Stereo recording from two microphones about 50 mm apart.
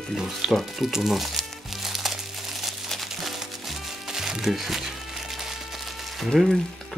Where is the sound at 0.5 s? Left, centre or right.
Centre.